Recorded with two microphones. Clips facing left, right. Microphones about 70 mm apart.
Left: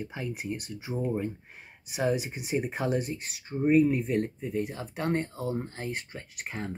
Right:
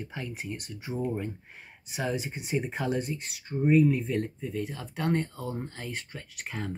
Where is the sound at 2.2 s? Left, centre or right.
Centre.